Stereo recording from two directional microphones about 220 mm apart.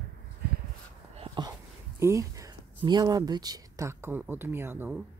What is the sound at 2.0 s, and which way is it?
Speech, 15° right (ahead or behind).